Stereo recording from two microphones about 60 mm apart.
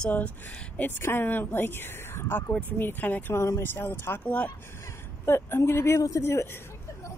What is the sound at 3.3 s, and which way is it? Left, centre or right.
Speech, left.